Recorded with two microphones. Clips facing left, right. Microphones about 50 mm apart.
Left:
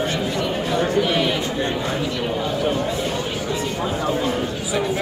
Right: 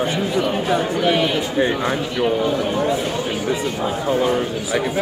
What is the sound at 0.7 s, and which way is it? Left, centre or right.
Speech, centre.